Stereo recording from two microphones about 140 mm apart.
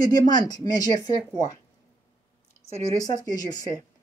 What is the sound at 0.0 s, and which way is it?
Speech, 30° left (ahead or behind).